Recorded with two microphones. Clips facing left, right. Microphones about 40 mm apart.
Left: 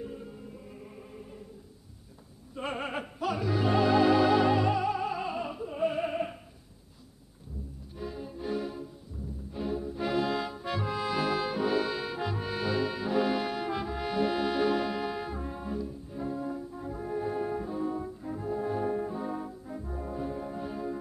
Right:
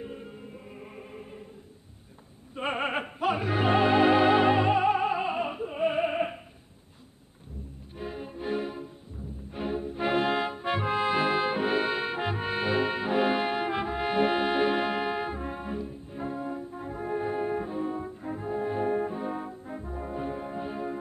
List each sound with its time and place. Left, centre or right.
0.0 s music: right
2.5 s music: right
8.0 s music: right
9.5 s brass instrument: right
20.0 s music: right